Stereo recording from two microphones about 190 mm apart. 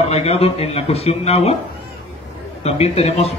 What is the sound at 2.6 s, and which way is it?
Speech, 35° left (ahead or behind).